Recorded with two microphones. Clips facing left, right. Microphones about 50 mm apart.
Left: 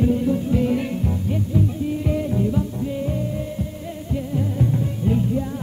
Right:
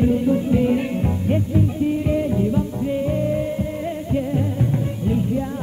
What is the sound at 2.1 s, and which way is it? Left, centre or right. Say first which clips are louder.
Music: right 2 dB; centre.